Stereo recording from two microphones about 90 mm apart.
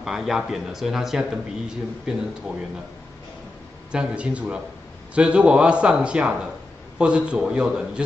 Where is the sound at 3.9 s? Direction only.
15° right (ahead or behind).